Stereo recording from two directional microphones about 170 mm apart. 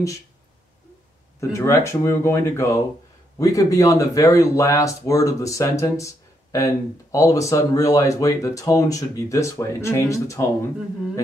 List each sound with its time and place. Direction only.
1.5 s speech: 15° left (ahead or behind)